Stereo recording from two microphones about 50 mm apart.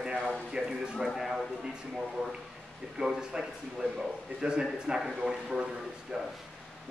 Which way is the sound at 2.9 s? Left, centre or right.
Centre.